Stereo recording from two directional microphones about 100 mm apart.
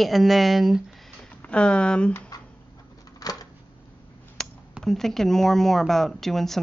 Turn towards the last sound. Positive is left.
turn(degrees=5)  # may be behind; listen again after turning